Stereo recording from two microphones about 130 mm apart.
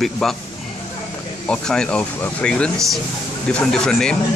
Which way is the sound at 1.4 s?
5° left (ahead or behind).